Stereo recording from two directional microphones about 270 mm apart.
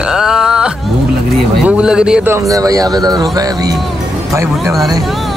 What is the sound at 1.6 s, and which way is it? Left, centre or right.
Speech, centre.